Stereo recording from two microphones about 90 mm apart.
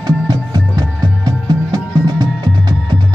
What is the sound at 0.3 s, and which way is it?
Music, 45° right (ahead or behind).